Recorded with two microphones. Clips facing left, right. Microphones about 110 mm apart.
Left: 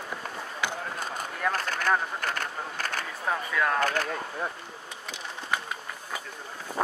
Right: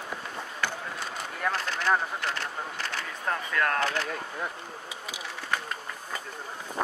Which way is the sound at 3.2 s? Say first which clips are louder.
Left 1 dB; 5° left (ahead or behind).